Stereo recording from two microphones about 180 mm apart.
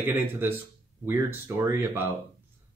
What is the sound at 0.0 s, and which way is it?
Speech, 10° right (ahead or behind).